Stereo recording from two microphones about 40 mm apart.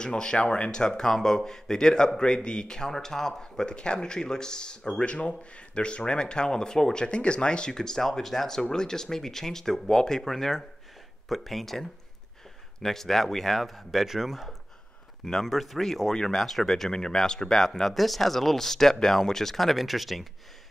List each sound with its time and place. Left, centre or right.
0.0 s a man's voice: centre
15.2 s a man's voice: centre